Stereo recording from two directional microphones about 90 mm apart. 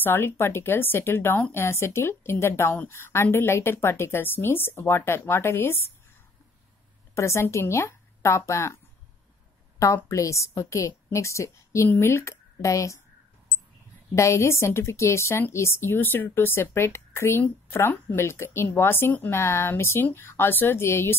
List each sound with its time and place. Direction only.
0.0 s a woman's voice: 25° left (ahead or behind)
7.2 s speech: 30° left (ahead or behind)
9.9 s a woman's voice: 35° left (ahead or behind)
14.1 s a woman's voice: 35° left (ahead or behind)